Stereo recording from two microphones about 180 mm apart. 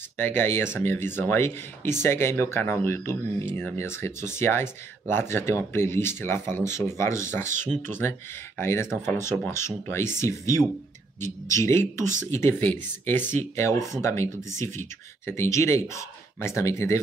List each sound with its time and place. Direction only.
0.2 s speech: 10° left (ahead or behind)
7.4 s speech: 45° right (ahead or behind)
8.5 s speech: 15° left (ahead or behind)